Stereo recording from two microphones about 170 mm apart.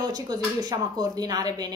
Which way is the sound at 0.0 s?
25° right (ahead or behind).